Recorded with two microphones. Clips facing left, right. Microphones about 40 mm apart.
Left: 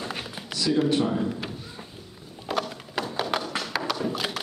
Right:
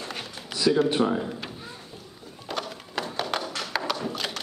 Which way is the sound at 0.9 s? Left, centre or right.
Right.